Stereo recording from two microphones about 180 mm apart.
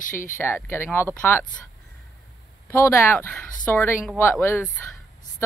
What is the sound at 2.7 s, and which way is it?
Speech, 15° left (ahead or behind).